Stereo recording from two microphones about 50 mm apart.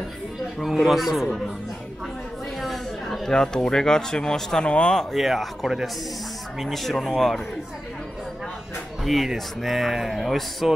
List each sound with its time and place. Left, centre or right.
0.8 s speech: centre
2.6 s speech: centre
4.6 s speech: left
5.1 s speech: centre
9.0 s speech: centre